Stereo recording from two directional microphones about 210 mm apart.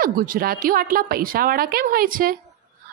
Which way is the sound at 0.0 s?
40° right (ahead or behind).